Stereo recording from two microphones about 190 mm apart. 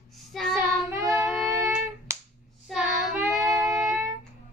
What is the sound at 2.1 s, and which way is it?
Finger snapping, 10° right (ahead or behind).